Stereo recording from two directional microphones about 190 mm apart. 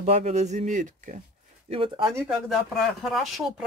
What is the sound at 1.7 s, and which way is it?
Speech, 30° right (ahead or behind).